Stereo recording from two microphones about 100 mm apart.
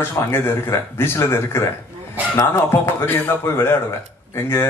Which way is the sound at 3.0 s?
20° left (ahead or behind).